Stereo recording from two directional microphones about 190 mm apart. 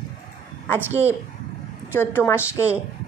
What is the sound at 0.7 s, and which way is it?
Speech, 10° right (ahead or behind).